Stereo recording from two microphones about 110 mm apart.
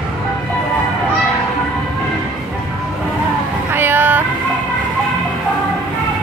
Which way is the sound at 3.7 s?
15° right (ahead or behind).